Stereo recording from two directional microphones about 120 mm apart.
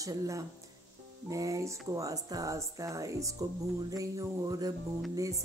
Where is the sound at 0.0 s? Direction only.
30° right (ahead or behind).